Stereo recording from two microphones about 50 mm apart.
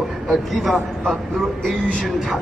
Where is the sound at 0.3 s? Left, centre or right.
Centre.